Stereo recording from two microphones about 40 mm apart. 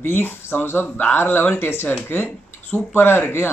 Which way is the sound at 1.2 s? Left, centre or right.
Left.